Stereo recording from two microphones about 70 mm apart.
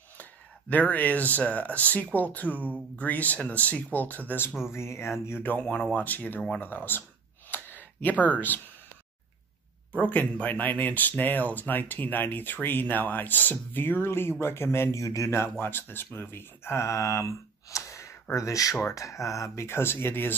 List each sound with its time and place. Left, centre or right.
0.2 s speech: left
4.7 s speech: left
5.5 s speech: left
7.5 s a sound: left
9.9 s speech: left
15.6 s speech: left